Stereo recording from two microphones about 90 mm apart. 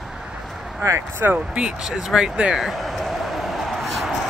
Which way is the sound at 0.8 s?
30° right (ahead or behind).